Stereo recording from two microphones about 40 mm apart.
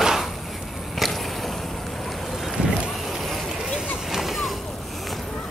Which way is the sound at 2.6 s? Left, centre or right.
Centre.